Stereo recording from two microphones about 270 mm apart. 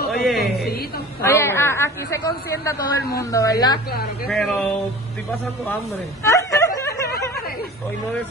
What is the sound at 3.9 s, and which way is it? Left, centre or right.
Speech, left.